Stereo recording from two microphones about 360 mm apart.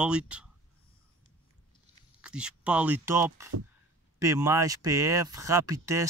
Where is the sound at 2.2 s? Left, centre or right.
Centre.